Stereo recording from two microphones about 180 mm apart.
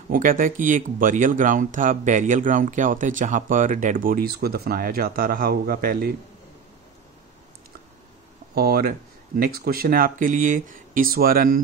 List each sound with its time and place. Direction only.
0.1 s speech: 50° right (ahead or behind)
8.5 s speech: 55° right (ahead or behind)